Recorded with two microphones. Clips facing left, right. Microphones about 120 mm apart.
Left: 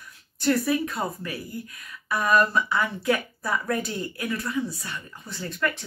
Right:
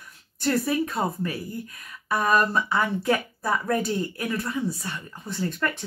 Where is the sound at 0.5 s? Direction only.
30° right (ahead or behind).